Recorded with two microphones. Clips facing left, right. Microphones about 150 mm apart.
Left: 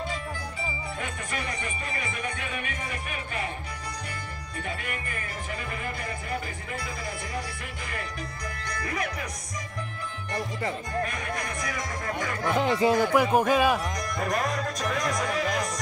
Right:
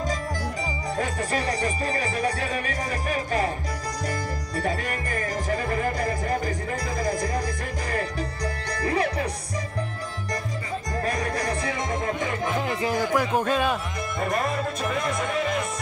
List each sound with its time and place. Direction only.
0.9 s speech: 35° right (ahead or behind)
4.6 s music: 40° right (ahead or behind)
8.6 s music: 30° right (ahead or behind)
11.0 s music: 35° right (ahead or behind)
12.2 s music: 25° right (ahead or behind)
12.8 s speech: 20° left (ahead or behind); by 15.6 s centre (ahead or behind)